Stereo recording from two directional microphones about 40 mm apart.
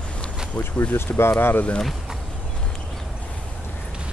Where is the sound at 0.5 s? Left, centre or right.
Left.